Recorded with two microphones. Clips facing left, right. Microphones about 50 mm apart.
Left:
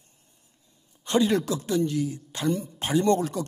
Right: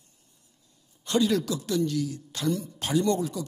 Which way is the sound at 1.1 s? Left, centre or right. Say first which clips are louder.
Left 2 dB; left.